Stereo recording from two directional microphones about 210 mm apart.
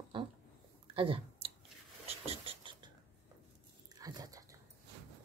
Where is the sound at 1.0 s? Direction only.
25° right (ahead or behind).